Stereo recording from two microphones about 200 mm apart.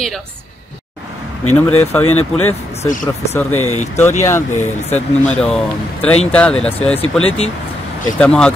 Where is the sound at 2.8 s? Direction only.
35° left (ahead or behind).